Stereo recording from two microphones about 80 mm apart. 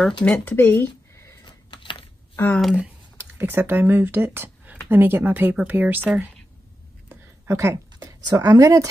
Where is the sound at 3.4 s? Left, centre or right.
Right.